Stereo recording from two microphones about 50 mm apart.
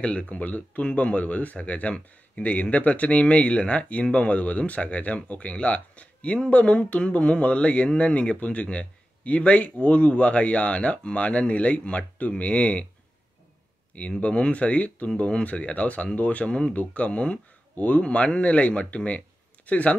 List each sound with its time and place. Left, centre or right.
0.0 s speech: left
14.2 s speech: left